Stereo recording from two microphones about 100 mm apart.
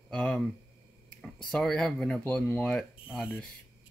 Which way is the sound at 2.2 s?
20° left (ahead or behind).